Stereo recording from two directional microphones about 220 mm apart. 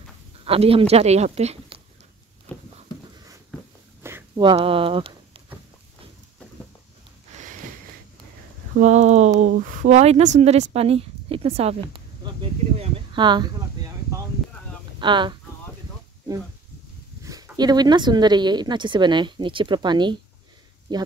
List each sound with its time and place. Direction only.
0.5 s speech: 25° right (ahead or behind)
4.0 s speech: 15° right (ahead or behind)
8.7 s speech: 30° right (ahead or behind)
11.9 s a sound: 25° right (ahead or behind)
15.0 s speech: 20° right (ahead or behind)
17.2 s speech: 15° right (ahead or behind)